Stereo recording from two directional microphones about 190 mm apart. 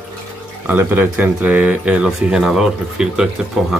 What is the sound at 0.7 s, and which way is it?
Speech, 10° right (ahead or behind).